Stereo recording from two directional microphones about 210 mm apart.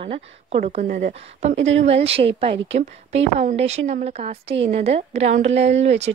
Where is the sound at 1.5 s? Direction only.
65° right (ahead or behind).